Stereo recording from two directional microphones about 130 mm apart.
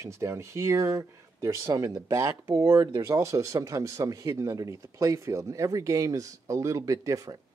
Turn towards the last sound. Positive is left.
turn(degrees=-25)  # may be behind; listen again after turning